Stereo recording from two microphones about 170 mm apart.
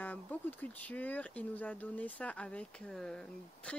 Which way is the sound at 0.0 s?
10° left (ahead or behind).